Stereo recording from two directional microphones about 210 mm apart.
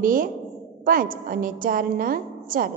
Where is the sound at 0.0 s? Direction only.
40° right (ahead or behind).